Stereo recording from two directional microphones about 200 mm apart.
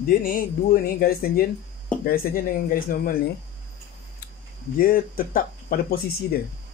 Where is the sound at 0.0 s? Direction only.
45° left (ahead or behind).